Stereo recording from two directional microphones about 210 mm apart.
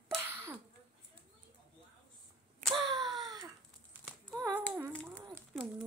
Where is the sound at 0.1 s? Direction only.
10° right (ahead or behind).